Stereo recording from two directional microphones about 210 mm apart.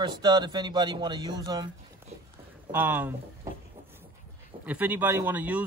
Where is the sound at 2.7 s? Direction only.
10° right (ahead or behind).